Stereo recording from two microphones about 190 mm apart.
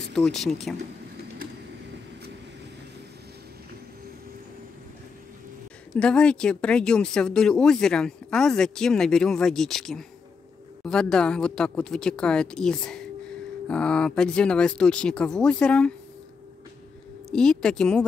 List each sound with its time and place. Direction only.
0.1 s speech: centre (ahead or behind)
5.9 s speech: 5° left (ahead or behind)
17.3 s speech: 5° left (ahead or behind)